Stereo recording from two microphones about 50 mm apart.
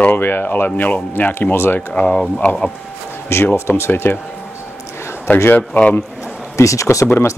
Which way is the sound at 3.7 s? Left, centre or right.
Left.